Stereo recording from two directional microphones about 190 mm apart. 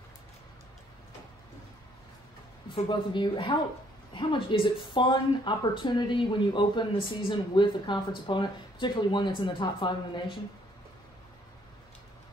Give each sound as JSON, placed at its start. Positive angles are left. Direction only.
{"t": 2.7, "sound": "speech", "side_deg": 25}